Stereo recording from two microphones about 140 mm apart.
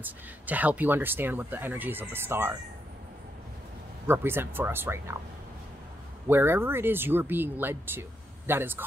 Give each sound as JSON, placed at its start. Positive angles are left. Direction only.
{"t": 0.0, "sound": "speech", "side_deg": -10}
{"t": 4.1, "sound": "speech", "side_deg": -15}
{"t": 6.2, "sound": "speech", "side_deg": -15}